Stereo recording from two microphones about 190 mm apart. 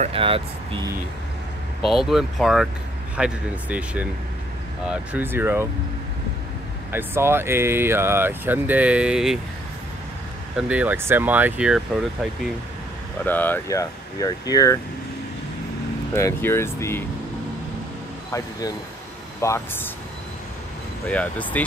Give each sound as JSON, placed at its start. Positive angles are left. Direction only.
{"t": 0.0, "sound": "speech", "side_deg": -30}
{"t": 1.9, "sound": "speech", "side_deg": 0}
{"t": 6.9, "sound": "speech", "side_deg": -10}
{"t": 10.7, "sound": "speech", "side_deg": -10}
{"t": 13.2, "sound": "speech", "side_deg": 10}
{"t": 16.2, "sound": "speech", "side_deg": 15}
{"t": 18.3, "sound": "speech", "side_deg": 20}
{"t": 21.1, "sound": "speech", "side_deg": 10}